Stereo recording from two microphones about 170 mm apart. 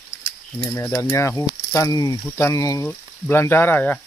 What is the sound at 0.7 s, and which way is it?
Speech, 15° left (ahead or behind).